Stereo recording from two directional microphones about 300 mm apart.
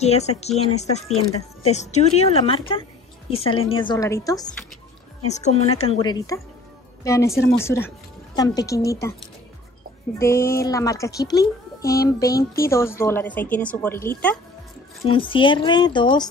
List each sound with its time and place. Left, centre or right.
0.0 s a woman's voice: left
5.3 s a child's voice: left
10.1 s a child's voice: centre
15.0 s a child's voice: centre